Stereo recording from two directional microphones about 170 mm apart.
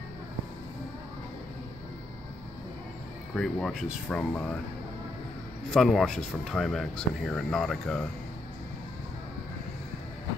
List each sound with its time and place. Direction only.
3.3 s speech: 5° left (ahead or behind)
5.7 s speech: centre (ahead or behind)